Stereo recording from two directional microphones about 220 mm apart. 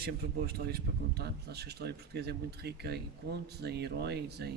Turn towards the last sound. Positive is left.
turn(degrees=-50)  # may be behind; listen again after turning